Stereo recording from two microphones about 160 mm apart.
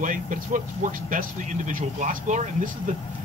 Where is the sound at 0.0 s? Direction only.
55° right (ahead or behind).